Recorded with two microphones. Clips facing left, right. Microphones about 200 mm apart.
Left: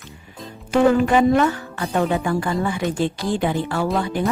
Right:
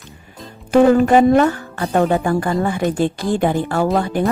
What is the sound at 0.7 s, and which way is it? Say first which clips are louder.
A woman's voice: right 4 dB; 40° right (ahead or behind).